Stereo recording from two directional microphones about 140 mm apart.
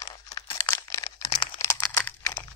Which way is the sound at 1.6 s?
20° left (ahead or behind).